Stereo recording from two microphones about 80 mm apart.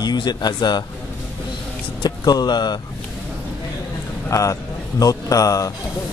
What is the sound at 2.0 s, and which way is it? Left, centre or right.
Speech, left.